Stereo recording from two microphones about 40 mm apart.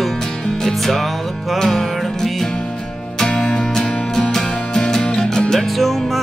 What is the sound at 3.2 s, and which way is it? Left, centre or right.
Music, left.